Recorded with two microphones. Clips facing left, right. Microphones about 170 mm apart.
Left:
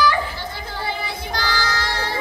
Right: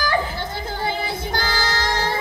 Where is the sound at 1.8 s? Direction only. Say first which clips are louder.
Right 3 dB; 45° right (ahead or behind).